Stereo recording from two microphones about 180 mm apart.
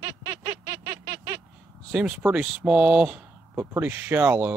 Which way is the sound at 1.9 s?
5° right (ahead or behind).